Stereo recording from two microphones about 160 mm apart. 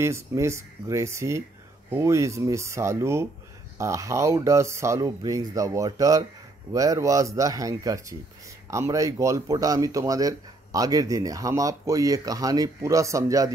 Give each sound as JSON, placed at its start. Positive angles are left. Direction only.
{"t": 0.0, "sound": "speech", "side_deg": -15}